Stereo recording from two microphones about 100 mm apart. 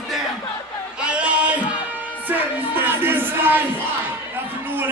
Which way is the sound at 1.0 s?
10° right (ahead or behind).